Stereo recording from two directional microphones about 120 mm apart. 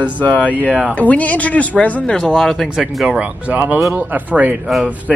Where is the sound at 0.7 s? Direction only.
10° right (ahead or behind).